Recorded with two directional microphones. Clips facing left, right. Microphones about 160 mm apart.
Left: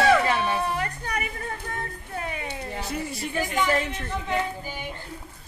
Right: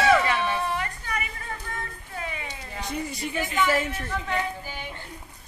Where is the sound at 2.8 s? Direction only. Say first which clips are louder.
Right 3 dB; 5° left (ahead or behind).